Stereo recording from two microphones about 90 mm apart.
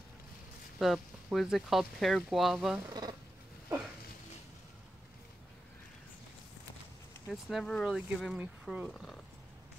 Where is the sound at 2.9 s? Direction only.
50° right (ahead or behind).